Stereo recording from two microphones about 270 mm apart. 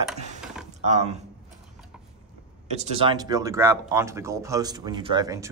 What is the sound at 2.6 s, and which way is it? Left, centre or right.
Speech, right.